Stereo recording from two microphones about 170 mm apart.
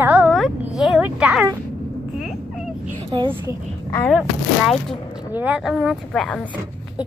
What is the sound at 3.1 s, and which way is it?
Speech, 30° right (ahead or behind).